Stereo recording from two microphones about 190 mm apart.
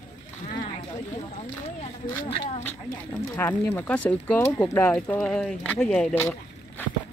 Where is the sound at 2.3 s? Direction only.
30° left (ahead or behind).